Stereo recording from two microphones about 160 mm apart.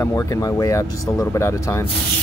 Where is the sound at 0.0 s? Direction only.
20° left (ahead or behind).